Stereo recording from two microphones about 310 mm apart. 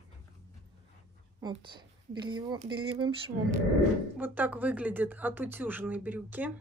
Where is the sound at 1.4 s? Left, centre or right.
Centre.